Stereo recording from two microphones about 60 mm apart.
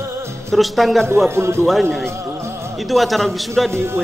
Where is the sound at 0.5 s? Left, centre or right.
Centre.